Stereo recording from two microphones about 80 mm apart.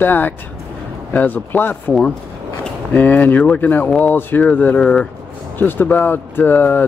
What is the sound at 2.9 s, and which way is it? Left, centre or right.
Speech, left.